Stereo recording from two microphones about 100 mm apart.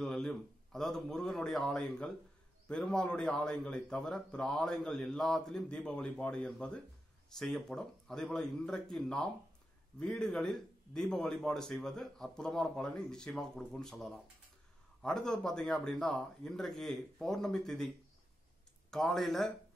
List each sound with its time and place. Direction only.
0.0 s a man's voice: 5° left (ahead or behind)